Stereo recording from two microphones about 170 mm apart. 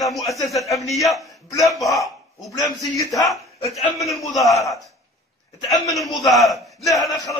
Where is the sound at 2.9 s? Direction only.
20° left (ahead or behind).